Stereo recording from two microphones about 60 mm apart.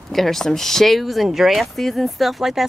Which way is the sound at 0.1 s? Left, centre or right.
Centre.